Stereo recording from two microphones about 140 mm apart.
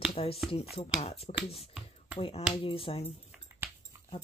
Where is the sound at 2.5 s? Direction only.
35° left (ahead or behind).